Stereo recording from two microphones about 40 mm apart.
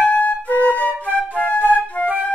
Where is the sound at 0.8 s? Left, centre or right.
Left.